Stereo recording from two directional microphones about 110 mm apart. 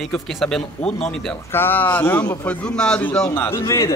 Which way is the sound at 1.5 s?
20° left (ahead or behind).